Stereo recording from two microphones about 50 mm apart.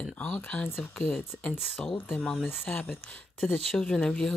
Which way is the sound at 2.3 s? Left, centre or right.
Centre.